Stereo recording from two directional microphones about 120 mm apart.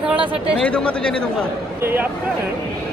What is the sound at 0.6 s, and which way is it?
Speech, 10° left (ahead or behind).